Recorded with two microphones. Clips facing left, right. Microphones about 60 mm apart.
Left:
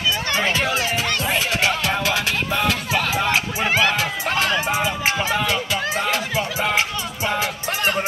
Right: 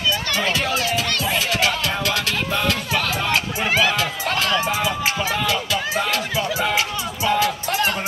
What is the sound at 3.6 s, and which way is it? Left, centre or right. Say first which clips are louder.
Music: even; centre.